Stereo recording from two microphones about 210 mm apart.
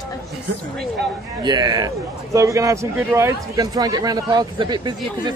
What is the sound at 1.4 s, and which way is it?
A man's voice, 20° right (ahead or behind).